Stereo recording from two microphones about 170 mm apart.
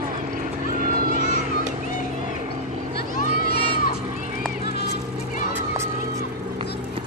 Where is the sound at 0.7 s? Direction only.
50° right (ahead or behind).